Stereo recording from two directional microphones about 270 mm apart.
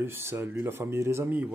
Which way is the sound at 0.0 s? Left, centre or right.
Centre.